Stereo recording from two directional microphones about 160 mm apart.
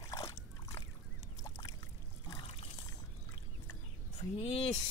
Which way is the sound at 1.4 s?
20° left (ahead or behind).